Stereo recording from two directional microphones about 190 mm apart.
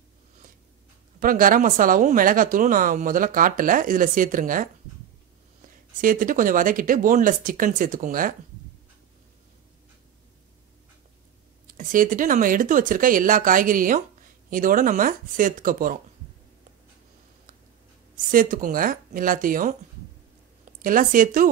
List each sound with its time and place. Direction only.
1.2 s speech: 45° right (ahead or behind)
11.6 s speech: 45° right (ahead or behind)
18.1 s speech: 45° right (ahead or behind)
20.8 s speech: 45° right (ahead or behind)